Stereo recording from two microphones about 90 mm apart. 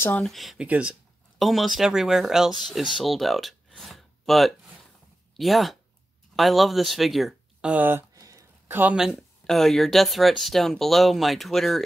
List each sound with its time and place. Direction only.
0.1 s speech: 5° left (ahead or behind)
0.6 s speech: 15° right (ahead or behind)
1.4 s speech: centre (ahead or behind)
7.6 s speech: 20° right (ahead or behind)
8.1 s a sound: 40° right (ahead or behind)
8.6 s speech: 20° right (ahead or behind)
8.9 s speech: 5° right (ahead or behind)